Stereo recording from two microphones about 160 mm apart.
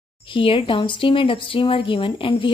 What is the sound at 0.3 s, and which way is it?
Speech, 35° left (ahead or behind).